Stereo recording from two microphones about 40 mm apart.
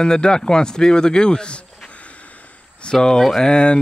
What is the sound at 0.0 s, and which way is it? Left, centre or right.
A man's voice, left.